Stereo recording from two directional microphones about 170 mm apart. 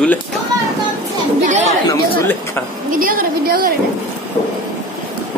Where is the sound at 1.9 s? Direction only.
15° left (ahead or behind).